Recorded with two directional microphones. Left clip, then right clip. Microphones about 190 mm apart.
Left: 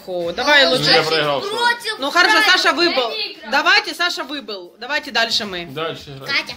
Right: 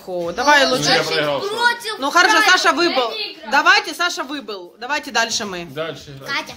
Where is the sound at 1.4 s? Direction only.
65° right (ahead or behind).